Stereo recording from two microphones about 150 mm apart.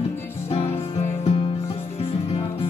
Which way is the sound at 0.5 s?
40° left (ahead or behind).